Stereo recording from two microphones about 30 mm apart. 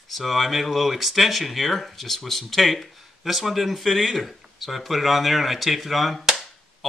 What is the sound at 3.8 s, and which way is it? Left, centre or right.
Cap gun, centre.